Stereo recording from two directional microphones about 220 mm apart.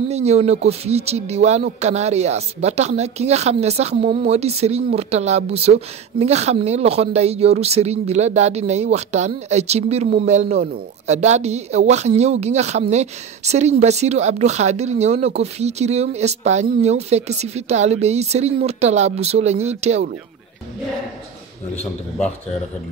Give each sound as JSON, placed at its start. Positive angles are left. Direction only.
{"t": 0.1, "sound": "speech", "side_deg": -30}